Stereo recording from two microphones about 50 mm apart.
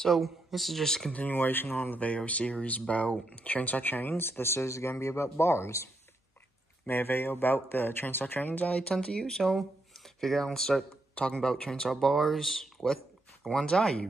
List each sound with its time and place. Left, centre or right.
0.0 s speech: centre
1.1 s speech: left
6.9 s speech: left
8.6 s speech: left
8.9 s speech: centre
11.9 s speech: centre